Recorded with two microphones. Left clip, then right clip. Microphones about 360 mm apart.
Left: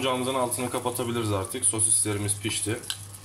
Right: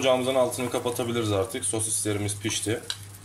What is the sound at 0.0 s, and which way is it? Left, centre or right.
Speech, centre.